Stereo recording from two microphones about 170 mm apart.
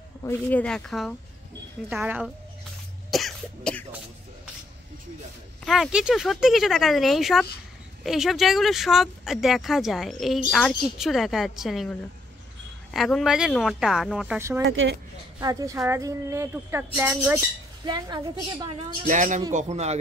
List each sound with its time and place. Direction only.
0.2 s speech: 15° left (ahead or behind); by 2.3 s 5° right (ahead or behind)
3.1 s cough: centre (ahead or behind)
5.7 s speech: 5° right (ahead or behind)
12.9 s speech: centre (ahead or behind)
15.4 s a woman's voice: 20° right (ahead or behind)
17.8 s a woman's voice: 25° right (ahead or behind)
19.0 s a man's voice: 45° right (ahead or behind)